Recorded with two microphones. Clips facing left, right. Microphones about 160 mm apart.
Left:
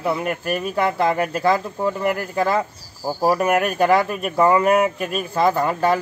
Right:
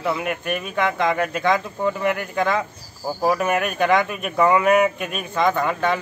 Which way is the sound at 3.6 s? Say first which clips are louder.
Left 2 dB; 35° left (ahead or behind).